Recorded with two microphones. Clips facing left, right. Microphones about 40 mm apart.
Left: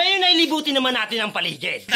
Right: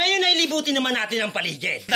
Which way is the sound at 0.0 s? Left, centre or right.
Left.